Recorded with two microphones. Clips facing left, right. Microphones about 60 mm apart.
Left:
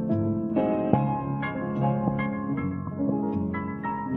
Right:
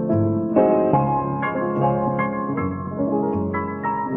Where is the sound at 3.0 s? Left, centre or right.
Right.